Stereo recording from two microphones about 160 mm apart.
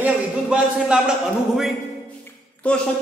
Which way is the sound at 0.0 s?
5° right (ahead or behind).